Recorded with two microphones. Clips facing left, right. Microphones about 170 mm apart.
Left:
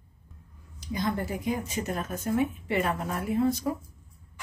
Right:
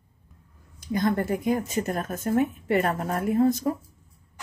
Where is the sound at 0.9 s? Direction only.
55° right (ahead or behind).